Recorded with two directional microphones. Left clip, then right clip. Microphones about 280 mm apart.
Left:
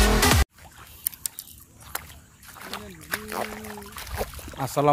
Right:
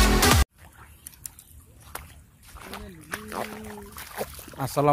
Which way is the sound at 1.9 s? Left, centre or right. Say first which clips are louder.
Left 4 dB; centre.